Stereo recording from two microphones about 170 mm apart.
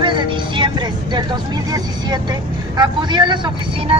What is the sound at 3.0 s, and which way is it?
Speech, 25° right (ahead or behind).